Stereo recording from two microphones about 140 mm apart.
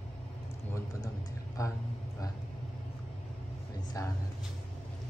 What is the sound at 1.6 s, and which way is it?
Speech, 25° left (ahead or behind).